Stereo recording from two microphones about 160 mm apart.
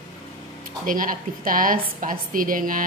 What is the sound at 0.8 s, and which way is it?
A woman's voice, 60° right (ahead or behind).